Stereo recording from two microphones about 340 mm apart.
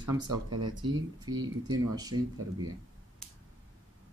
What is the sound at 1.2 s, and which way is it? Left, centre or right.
Speech, centre.